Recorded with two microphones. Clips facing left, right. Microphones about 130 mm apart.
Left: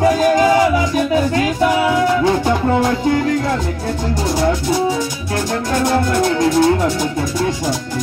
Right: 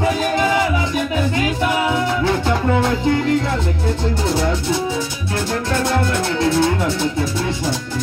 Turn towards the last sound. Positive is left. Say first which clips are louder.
# left 3 dB
turn(degrees=15)  # may be behind; listen again after turning